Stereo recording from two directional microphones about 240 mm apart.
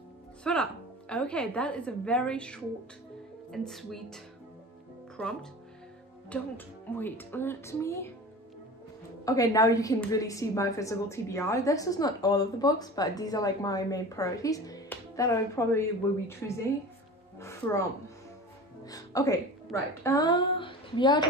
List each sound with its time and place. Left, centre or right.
0.4 s a woman's voice: centre
9.2 s a woman's voice: centre
17.4 s a sound: centre
18.9 s speech: centre